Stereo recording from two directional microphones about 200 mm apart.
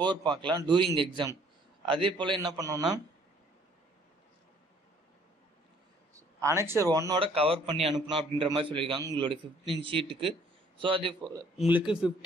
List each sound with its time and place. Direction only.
0.0 s a man's voice: 25° right (ahead or behind)
6.4 s a man's voice: 10° right (ahead or behind)
11.5 s speech: 5° right (ahead or behind)